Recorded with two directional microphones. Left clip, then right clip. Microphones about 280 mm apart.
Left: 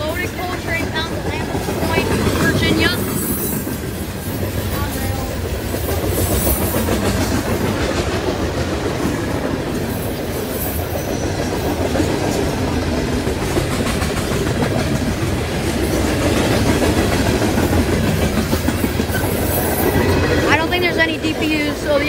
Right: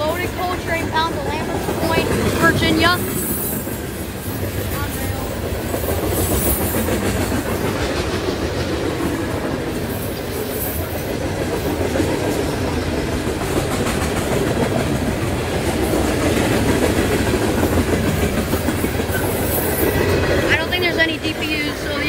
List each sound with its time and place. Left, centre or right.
2.5 s vehicle: centre
20.4 s vehicle: centre